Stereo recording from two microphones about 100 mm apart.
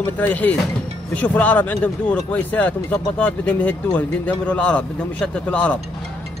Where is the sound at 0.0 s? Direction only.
15° left (ahead or behind).